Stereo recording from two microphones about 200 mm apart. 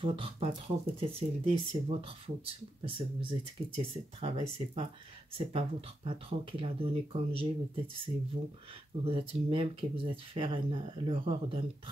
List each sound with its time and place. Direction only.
0.0 s speech: 25° right (ahead or behind)